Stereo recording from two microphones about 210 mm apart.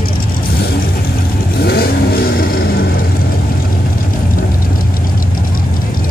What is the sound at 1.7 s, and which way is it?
Vehicle, 45° left (ahead or behind).